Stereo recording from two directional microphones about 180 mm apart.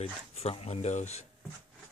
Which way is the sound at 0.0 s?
35° left (ahead or behind).